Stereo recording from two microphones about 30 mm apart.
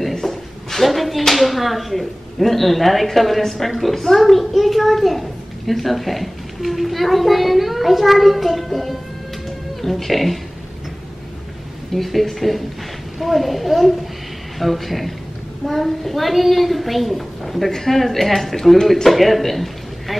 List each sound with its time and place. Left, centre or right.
0.1 s a woman's voice: centre
11.9 s a woman's voice: centre